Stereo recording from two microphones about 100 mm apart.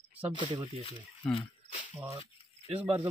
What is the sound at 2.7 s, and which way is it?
Speech, 70° right (ahead or behind).